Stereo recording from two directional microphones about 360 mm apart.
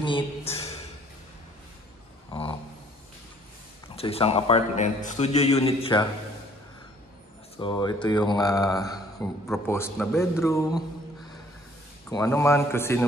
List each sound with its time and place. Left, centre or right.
0.0 s a man's voice: centre
3.9 s a man's voice: centre
7.5 s a man's voice: centre
12.1 s a man's voice: centre